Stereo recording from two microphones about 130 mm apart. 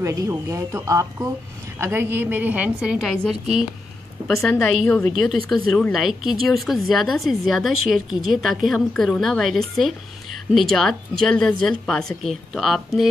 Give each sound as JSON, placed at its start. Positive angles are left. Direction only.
{"t": 0.0, "sound": "a woman's voice", "side_deg": -25}